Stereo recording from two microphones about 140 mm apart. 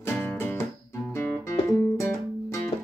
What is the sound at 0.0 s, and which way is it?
Music, 15° left (ahead or behind).